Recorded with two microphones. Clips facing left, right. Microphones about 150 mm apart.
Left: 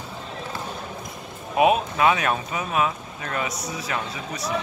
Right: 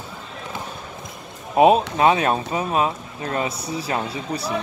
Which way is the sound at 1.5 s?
35° right (ahead or behind).